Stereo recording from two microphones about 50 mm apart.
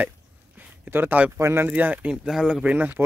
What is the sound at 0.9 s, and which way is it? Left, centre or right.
Speech, right.